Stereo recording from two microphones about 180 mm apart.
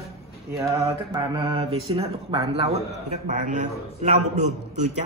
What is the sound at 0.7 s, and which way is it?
Mantra, 25° right (ahead or behind).